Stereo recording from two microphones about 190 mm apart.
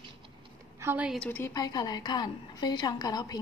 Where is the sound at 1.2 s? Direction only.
10° left (ahead or behind).